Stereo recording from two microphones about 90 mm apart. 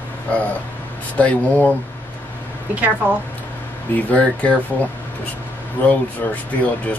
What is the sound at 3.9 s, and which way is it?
Speech, 15° left (ahead or behind).